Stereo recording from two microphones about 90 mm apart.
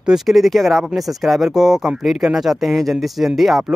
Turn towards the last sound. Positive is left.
turn(degrees=0)  # may be behind; listen again after turning